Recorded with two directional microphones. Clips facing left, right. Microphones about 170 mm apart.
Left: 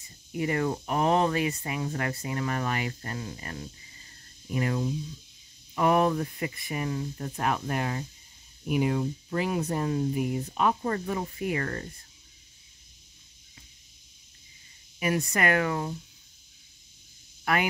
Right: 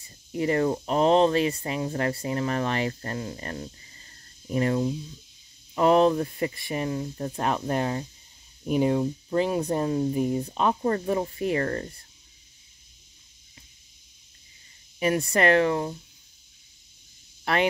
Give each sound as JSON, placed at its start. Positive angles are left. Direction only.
{"t": 0.3, "sound": "speech", "side_deg": -30}
{"t": 15.0, "sound": "speech", "side_deg": -30}